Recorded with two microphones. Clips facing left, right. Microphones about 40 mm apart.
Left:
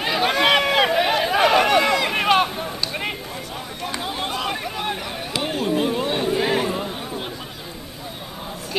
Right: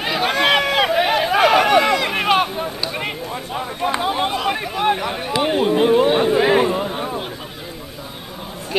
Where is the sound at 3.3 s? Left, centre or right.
Right.